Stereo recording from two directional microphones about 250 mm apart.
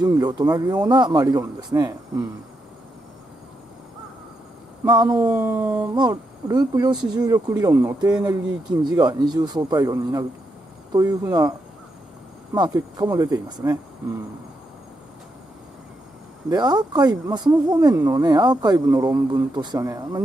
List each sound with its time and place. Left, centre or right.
0.0 s speech: centre
4.8 s speech: centre
5.2 s speech: centre
8.8 s speech: centre
12.5 s speech: centre
16.4 s speech: centre